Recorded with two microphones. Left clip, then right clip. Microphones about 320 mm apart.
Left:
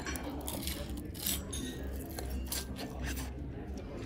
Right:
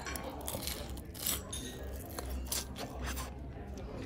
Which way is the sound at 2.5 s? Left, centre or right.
Right.